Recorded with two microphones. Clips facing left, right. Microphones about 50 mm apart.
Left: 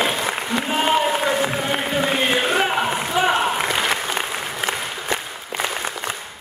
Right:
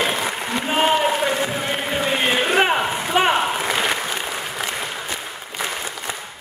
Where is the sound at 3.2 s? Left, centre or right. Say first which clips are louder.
Right 2 dB; right.